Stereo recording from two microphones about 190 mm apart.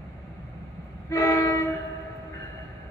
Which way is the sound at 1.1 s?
20° left (ahead or behind).